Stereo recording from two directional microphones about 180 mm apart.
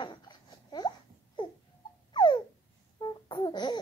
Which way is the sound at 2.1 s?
25° left (ahead or behind).